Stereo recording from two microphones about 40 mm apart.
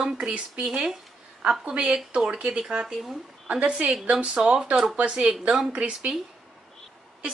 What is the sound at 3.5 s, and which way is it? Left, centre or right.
Speech, right.